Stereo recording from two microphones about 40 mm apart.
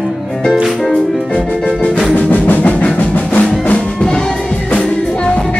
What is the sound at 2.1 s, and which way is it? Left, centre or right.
Music, left.